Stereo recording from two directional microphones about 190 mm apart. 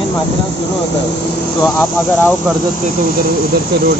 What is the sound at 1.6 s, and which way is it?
Speech, 10° left (ahead or behind).